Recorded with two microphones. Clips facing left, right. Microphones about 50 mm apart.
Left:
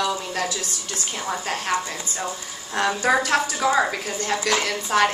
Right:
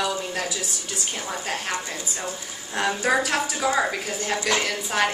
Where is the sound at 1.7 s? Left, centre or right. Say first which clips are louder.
Left 4 dB; centre.